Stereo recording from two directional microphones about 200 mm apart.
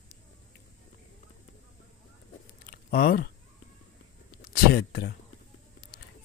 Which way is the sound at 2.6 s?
50° left (ahead or behind).